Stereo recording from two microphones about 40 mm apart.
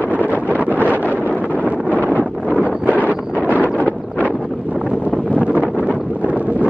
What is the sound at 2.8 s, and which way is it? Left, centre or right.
Wind noise, right.